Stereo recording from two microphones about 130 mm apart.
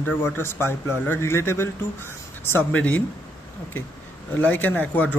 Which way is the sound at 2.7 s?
10° left (ahead or behind).